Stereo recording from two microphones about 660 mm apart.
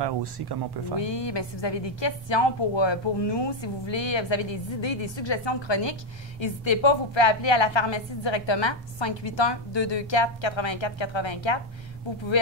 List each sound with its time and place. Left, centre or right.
0.0 s speech: right
0.9 s a woman's voice: left